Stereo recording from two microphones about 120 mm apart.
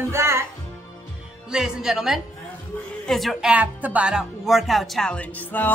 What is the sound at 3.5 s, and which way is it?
Speech, 10° right (ahead or behind).